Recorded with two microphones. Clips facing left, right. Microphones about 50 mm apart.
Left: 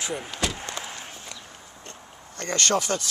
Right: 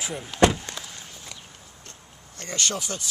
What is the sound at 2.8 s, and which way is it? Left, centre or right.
Speech, left.